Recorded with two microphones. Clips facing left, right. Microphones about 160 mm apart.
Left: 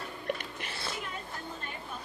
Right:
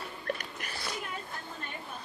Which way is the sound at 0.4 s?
25° left (ahead or behind).